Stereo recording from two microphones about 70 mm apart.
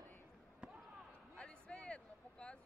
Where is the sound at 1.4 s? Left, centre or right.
Centre.